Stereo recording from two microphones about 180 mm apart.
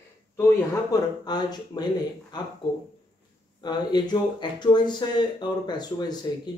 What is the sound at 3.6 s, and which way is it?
Speech, 25° left (ahead or behind).